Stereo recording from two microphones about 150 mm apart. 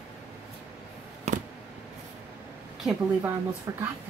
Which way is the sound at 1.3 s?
50° right (ahead or behind).